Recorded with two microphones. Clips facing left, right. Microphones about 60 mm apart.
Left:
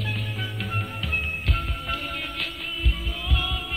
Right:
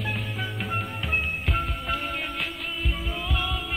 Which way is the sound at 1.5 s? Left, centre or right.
Centre.